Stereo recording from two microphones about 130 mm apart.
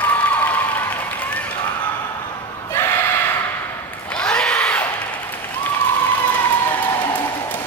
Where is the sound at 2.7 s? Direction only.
15° left (ahead or behind).